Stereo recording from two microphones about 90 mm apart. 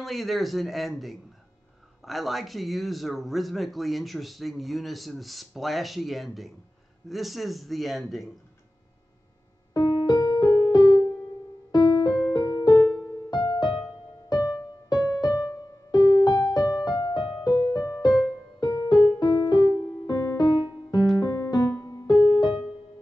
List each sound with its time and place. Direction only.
0.0 s speech: centre (ahead or behind)
9.8 s music: 55° left (ahead or behind)